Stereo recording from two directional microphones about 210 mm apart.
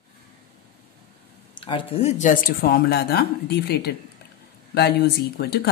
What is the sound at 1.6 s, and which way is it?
A woman's voice, 25° left (ahead or behind).